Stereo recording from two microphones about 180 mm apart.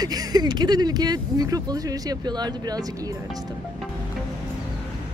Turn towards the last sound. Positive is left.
turn(degrees=-20)  # may be behind; listen again after turning